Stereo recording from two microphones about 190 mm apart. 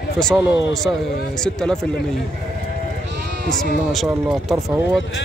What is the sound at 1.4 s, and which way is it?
Speech, 5° left (ahead or behind).